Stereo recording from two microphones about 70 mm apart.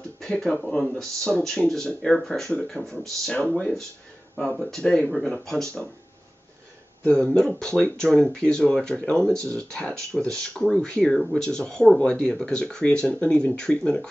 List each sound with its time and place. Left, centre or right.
0.4 s speech: centre
7.1 s speech: centre